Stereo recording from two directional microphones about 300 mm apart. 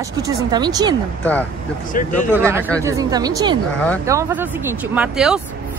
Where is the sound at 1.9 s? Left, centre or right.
Left.